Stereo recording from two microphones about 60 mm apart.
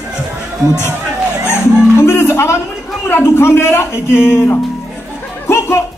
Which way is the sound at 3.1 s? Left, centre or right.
Left.